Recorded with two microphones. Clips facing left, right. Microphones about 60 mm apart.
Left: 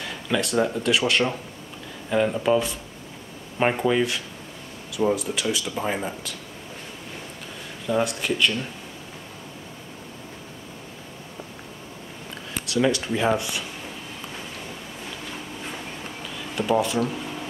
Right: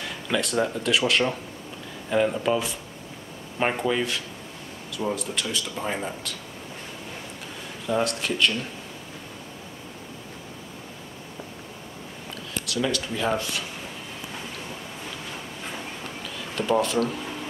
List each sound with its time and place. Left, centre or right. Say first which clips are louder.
0.0 s speech: left 1 dB; centre
7.8 s speech: left 1 dB; centre
12.8 s speech: left 4 dB; centre
13.4 s speech: even; centre
16.3 s a sound: left 1 dB; centre